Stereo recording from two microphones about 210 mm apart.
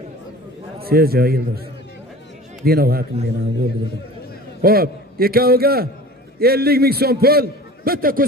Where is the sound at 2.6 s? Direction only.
45° right (ahead or behind).